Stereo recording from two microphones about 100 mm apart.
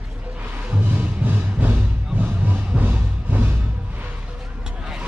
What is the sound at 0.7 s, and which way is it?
Music, 15° right (ahead or behind).